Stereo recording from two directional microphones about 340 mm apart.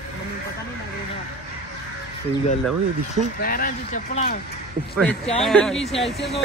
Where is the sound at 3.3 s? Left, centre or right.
Left.